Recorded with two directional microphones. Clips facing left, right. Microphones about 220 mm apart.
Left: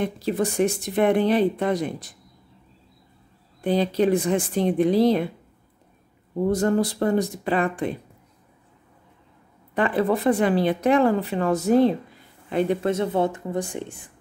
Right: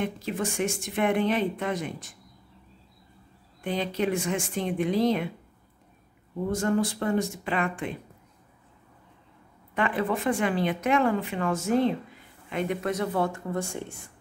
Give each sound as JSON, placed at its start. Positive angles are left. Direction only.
{"t": 0.0, "sound": "speech", "side_deg": 35}
{"t": 3.6, "sound": "speech", "side_deg": 35}
{"t": 6.5, "sound": "speech", "side_deg": 35}
{"t": 9.8, "sound": "speech", "side_deg": 35}